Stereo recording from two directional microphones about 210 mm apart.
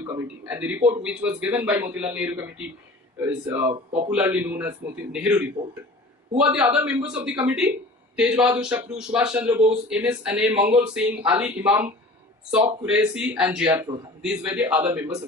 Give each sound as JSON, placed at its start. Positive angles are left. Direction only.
{"t": 0.0, "sound": "a man's voice", "side_deg": -10}